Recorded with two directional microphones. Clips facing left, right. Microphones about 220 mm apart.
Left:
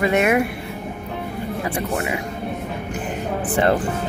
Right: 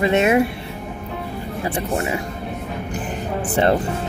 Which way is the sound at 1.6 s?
30° right (ahead or behind).